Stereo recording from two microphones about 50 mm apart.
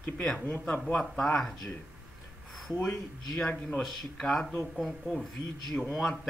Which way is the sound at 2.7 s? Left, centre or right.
Left.